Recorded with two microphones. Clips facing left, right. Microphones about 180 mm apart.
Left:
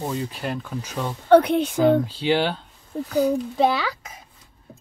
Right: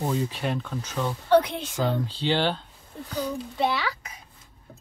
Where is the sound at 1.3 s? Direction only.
60° left (ahead or behind).